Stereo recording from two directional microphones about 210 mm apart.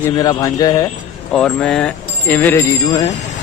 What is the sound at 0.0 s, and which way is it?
Speech, 20° left (ahead or behind).